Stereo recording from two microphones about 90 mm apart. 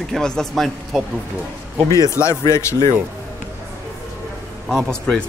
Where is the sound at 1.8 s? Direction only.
35° left (ahead or behind).